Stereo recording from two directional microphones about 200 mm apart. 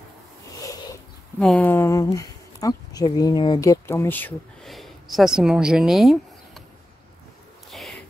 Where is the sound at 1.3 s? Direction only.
5° left (ahead or behind).